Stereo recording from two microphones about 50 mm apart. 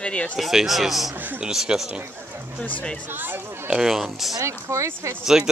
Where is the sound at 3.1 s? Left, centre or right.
Right.